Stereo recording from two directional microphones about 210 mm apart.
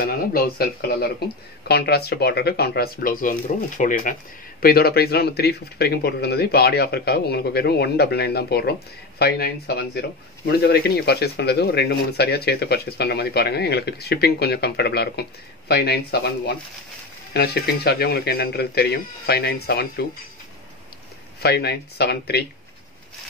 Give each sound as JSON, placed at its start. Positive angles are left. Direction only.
{"t": 0.0, "sound": "speech", "side_deg": 45}
{"t": 21.4, "sound": "speech", "side_deg": 50}